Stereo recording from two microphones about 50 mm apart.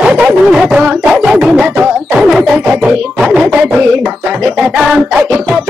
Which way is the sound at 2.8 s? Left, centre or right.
Centre.